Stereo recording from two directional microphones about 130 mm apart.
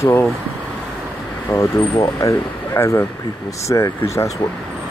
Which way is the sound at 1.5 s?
20° left (ahead or behind).